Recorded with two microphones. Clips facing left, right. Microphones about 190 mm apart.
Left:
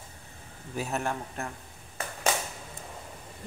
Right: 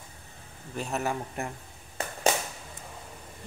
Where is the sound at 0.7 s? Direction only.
5° left (ahead or behind).